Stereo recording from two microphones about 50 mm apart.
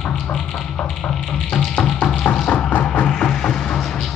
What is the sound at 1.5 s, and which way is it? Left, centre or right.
Music, centre.